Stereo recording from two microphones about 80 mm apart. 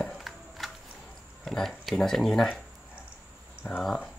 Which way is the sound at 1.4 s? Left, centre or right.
Centre.